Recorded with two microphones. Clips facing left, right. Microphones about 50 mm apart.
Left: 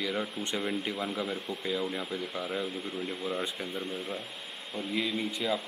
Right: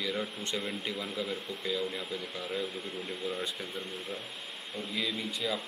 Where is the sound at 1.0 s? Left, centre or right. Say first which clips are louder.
Left 2 dB; left.